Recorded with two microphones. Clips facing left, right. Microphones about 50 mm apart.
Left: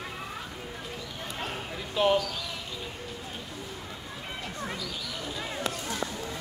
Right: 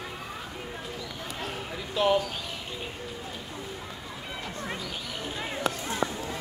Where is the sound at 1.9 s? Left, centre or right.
Centre.